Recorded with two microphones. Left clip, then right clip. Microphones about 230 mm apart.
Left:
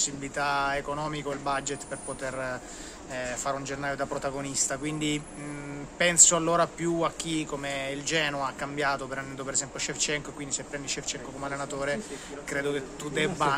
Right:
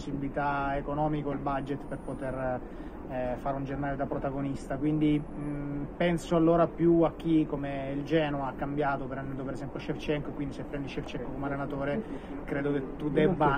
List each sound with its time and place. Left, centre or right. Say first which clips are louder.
0.4 s speech: left 3 dB; left
3.2 s speech: left 1 dB; left
11.4 s speech: left 2 dB; left